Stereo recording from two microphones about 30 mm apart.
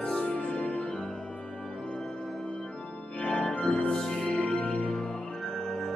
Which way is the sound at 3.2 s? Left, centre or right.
Left.